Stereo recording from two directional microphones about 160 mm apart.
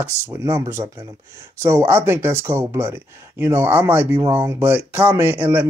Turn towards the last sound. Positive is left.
turn(degrees=-10)  # may be behind; listen again after turning